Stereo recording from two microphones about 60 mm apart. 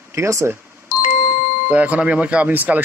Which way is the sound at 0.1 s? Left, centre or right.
Right.